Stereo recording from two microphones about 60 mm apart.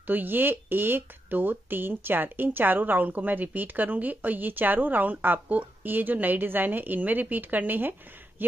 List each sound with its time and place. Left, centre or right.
0.0 s speech: right